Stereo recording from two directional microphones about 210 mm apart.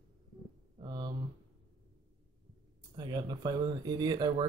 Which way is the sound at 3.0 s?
20° right (ahead or behind).